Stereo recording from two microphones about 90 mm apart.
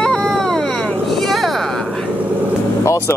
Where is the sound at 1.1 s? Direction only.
Centre (ahead or behind).